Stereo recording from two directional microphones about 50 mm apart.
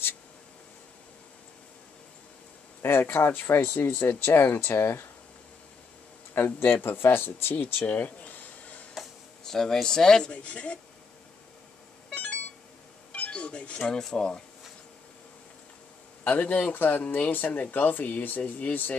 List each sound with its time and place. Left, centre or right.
2.8 s speech: left
6.3 s speech: left
7.5 s a sound: left
9.4 s speech: centre
10.3 s speech: left
13.1 s music: left
14.1 s speech: centre
16.3 s speech: left